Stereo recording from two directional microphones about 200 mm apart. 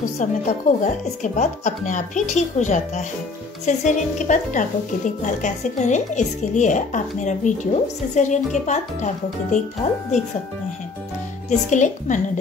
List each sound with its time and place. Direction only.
0.2 s speech: 40° left (ahead or behind)
11.7 s speech: 35° left (ahead or behind)